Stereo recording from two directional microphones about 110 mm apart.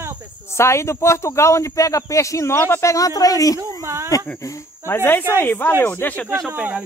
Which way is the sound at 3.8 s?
25° right (ahead or behind).